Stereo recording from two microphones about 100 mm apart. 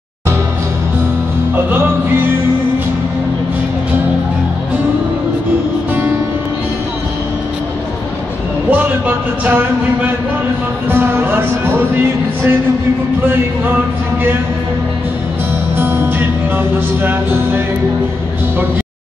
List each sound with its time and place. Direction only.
8.6 s a sound: 15° right (ahead or behind)
10.9 s music: 20° right (ahead or behind)
15.7 s music: 20° right (ahead or behind)